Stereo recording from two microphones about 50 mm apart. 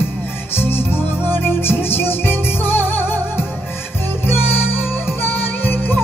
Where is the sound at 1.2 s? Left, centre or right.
Left.